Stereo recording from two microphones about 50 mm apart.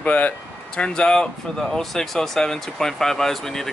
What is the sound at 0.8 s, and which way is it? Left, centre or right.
Speech, centre.